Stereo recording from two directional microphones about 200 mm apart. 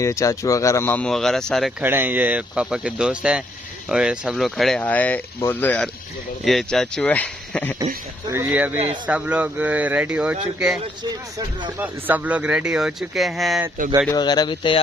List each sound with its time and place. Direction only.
0.0 s speech: 15° left (ahead or behind)
1.9 s speech: 10° right (ahead or behind); by 7.7 s 10° left (ahead or behind)
8.5 s speech: 5° right (ahead or behind)
11.8 s speech: 5° right (ahead or behind)
14.1 s speech: 20° left (ahead or behind)